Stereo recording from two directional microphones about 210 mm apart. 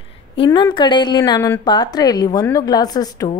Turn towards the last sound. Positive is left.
turn(degrees=20)  # may be behind; listen again after turning